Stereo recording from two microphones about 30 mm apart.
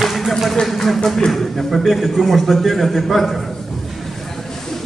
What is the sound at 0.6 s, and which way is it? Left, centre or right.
A man's voice, centre.